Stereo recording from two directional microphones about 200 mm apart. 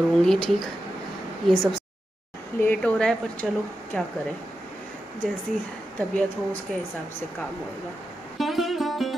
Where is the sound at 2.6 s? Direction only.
5° left (ahead or behind).